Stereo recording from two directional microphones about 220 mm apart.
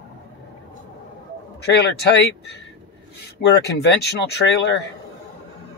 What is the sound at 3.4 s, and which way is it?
Speech, 50° left (ahead or behind).